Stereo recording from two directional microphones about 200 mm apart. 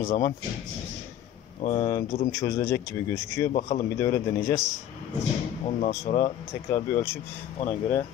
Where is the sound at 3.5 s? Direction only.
35° left (ahead or behind).